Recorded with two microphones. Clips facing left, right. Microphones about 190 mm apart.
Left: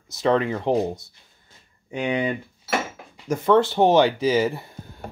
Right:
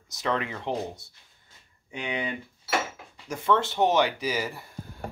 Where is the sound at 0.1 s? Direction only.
30° left (ahead or behind).